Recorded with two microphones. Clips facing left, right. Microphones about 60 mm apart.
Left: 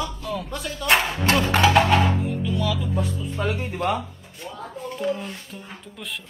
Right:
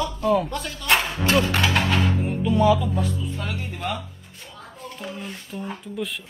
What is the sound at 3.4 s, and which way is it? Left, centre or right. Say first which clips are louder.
Speech: left 6 dB; centre.